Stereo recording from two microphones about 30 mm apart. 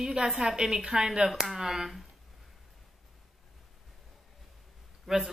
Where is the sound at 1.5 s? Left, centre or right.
Centre.